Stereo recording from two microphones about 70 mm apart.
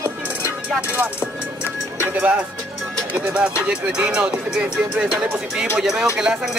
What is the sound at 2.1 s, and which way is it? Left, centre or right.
Speech, right.